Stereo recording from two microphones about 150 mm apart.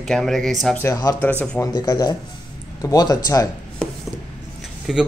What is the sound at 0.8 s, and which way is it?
Speech, 20° left (ahead or behind).